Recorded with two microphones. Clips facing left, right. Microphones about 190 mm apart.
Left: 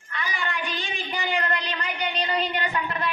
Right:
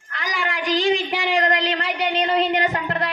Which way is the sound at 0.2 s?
90° right.